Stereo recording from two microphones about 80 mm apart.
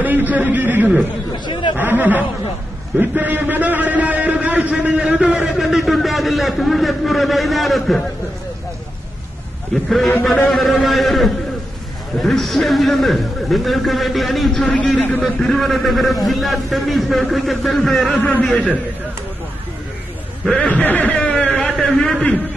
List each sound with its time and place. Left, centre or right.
0.0 s a man's voice: right
1.4 s speech: left
1.8 s a man's voice: right; by 8.0 s centre
9.8 s a man's voice: centre
14.7 s a man's voice: centre
15.2 s a man's voice: centre
20.6 s a man's voice: left